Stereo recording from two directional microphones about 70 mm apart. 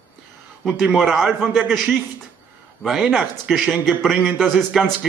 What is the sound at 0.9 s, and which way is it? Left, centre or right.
Speech, centre.